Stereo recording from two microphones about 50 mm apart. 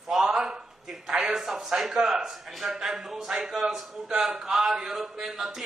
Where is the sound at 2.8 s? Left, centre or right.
Centre.